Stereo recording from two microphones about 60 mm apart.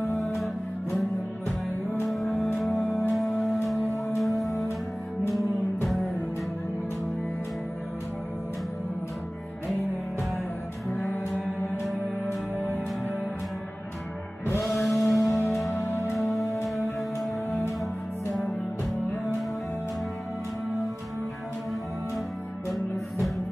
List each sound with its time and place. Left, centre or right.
2.0 s music: centre
2.3 s music: centre
3.1 s music: centre
10.9 s music: left
14.6 s music: centre
15.7 s music: left
16.6 s music: centre